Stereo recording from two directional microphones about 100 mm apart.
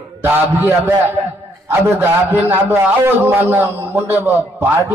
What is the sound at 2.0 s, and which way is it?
A man's voice, 20° right (ahead or behind).